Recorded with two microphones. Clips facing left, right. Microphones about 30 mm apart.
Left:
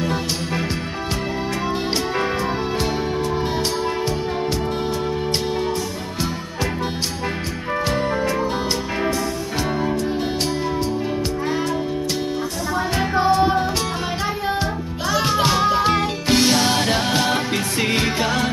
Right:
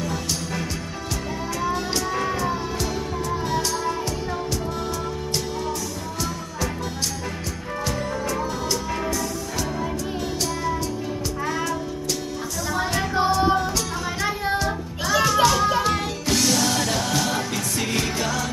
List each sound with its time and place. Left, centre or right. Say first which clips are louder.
0.0 s music: left 4 dB; left
7.8 s music: left 5 dB; left
15.2 s music: left 1 dB; left